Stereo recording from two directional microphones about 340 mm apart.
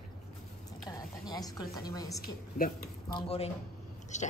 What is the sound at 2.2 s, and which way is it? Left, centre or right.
Speech, left.